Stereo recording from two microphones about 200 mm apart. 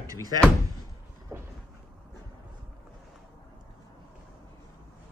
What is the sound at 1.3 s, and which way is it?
Cupboard open or close, 15° right (ahead or behind).